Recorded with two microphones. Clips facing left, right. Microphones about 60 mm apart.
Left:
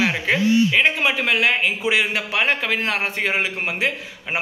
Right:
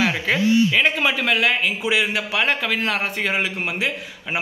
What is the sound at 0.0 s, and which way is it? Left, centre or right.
Speech, left.